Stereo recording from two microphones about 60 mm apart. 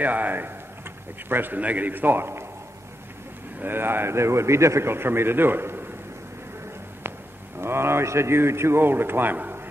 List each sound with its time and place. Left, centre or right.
0.0 s a man's voice: right
3.5 s a man's voice: right
7.5 s a man's voice: right